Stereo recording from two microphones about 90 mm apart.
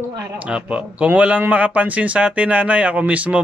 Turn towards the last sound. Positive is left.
turn(degrees=-15)  # may be behind; listen again after turning